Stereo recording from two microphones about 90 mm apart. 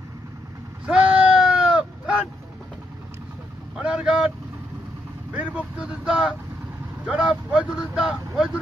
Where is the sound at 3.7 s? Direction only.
10° right (ahead or behind).